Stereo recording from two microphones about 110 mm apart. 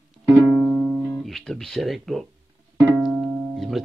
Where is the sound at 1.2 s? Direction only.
5° left (ahead or behind).